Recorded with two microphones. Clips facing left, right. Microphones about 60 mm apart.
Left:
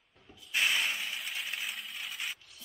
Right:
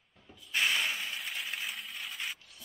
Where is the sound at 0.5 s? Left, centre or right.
Centre.